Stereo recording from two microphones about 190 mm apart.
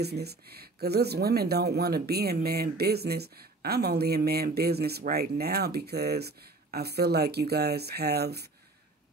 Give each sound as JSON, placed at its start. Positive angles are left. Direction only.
{"t": 0.0, "sound": "speech", "side_deg": -60}